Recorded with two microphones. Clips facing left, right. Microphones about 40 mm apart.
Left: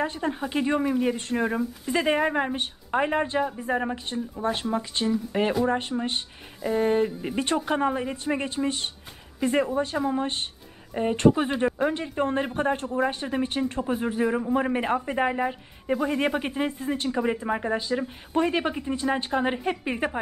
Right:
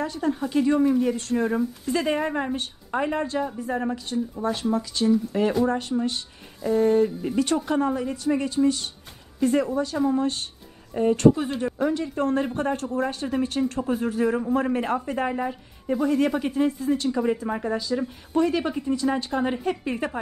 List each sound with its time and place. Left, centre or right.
0.0 s a woman's voice: left
0.8 s speech: centre
1.1 s a woman's voice: left
1.4 s speech: centre
1.9 s a woman's voice: left
6.6 s speech: centre
7.2 s a woman's voice: left